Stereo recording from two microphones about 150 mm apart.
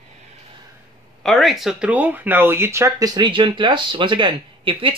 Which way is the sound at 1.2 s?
Centre (ahead or behind).